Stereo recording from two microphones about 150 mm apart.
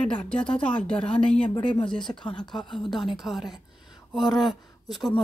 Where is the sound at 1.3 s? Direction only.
35° left (ahead or behind).